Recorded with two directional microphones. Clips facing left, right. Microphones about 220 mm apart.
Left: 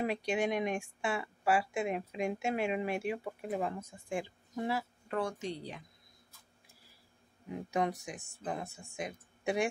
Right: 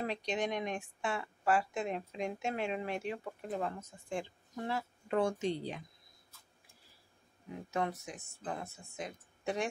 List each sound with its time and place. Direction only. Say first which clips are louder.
0.0 s a woman's voice: left 3 dB; 10° left (ahead or behind)
5.0 s a woman's voice: right 7 dB; 25° right (ahead or behind)
7.7 s a woman's voice: left 3 dB; 15° left (ahead or behind)